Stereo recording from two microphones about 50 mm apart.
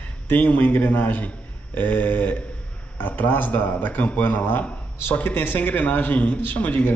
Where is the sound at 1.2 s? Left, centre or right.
Left.